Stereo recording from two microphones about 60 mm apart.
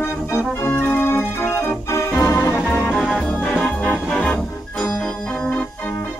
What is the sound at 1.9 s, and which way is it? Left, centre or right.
Organ, left.